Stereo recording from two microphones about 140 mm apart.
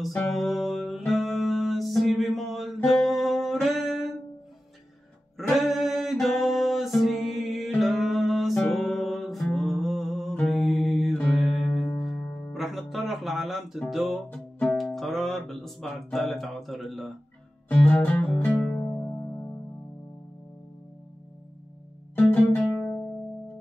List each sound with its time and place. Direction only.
0.0 s music: centre (ahead or behind)
5.5 s music: centre (ahead or behind)
10.4 s mantra: centre (ahead or behind)
11.4 s music: centre (ahead or behind)
12.5 s music: centre (ahead or behind)
18.8 s music: 20° left (ahead or behind)
22.1 s music: 15° left (ahead or behind)